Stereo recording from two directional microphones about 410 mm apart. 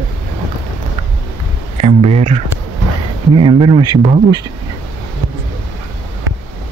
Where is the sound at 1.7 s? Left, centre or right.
Centre.